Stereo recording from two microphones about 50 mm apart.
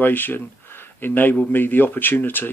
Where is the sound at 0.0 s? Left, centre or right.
Left.